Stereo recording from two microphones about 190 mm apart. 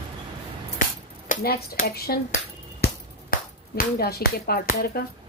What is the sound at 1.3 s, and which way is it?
Speech, 55° left (ahead or behind).